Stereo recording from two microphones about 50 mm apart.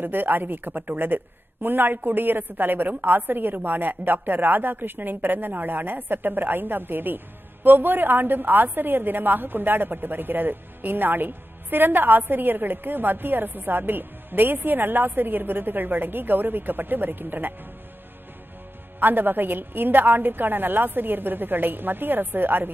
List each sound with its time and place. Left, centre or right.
0.0 s a woman's voice: right
18.9 s a woman's voice: right